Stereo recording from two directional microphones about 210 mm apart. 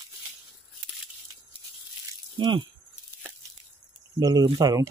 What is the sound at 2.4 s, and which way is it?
Speech, 20° right (ahead or behind).